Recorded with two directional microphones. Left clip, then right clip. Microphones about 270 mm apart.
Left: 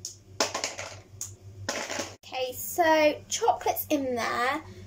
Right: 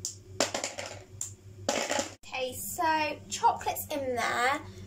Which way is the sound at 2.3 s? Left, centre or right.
Left.